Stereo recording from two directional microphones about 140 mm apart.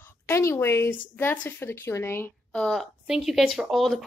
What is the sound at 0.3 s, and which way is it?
A woman's voice, 20° left (ahead or behind).